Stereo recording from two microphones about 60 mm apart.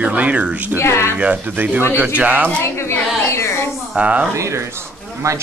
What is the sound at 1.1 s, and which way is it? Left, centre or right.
Speech, right.